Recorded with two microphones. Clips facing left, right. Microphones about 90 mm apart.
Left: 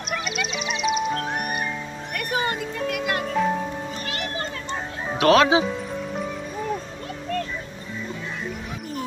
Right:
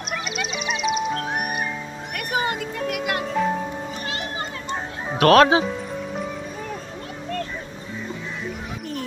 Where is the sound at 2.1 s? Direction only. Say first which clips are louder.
Right 1 dB; 15° right (ahead or behind).